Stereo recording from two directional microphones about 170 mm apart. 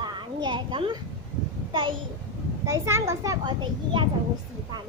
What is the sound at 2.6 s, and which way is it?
A child's voice, 15° right (ahead or behind).